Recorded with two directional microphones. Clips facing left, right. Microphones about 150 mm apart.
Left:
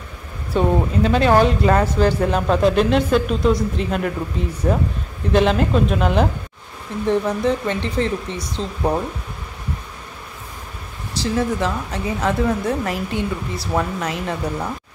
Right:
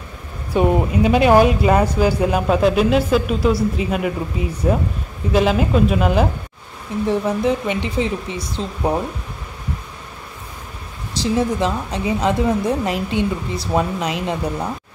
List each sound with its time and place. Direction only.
0.5 s speech: 10° right (ahead or behind)
11.3 s a woman's voice: 20° right (ahead or behind)